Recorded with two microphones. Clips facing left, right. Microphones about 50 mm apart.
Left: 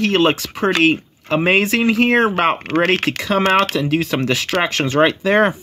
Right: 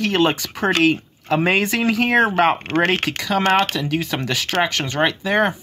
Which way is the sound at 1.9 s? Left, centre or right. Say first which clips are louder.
Right 1 dB; left.